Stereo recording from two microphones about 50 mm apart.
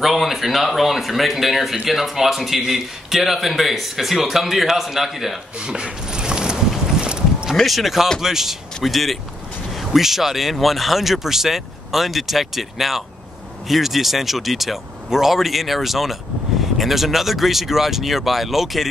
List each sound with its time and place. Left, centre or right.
0.0 s speech: centre
5.6 s a sound: centre
7.5 s speech: centre